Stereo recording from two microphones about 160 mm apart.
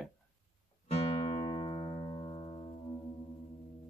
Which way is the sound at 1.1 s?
30° left (ahead or behind).